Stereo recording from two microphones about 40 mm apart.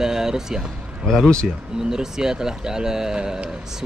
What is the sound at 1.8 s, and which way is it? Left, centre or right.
Speech, centre.